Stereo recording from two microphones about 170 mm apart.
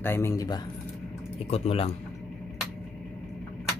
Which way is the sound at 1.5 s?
35° left (ahead or behind).